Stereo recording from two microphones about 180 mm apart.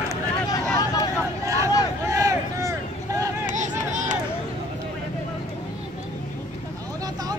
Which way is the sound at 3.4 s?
45° right (ahead or behind).